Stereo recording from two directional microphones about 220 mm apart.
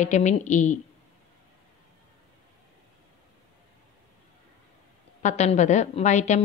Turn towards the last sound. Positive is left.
turn(degrees=30)  # may be behind; listen again after turning